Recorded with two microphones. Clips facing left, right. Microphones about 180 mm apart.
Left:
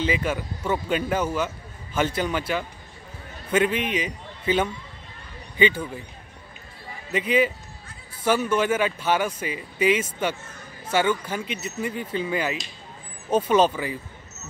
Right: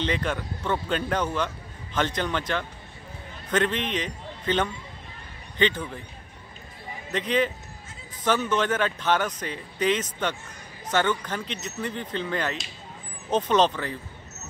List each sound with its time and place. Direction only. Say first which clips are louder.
0.0 s a man's voice: left 2 dB; 5° left (ahead or behind)
7.1 s speech: left 3 dB; 10° left (ahead or behind)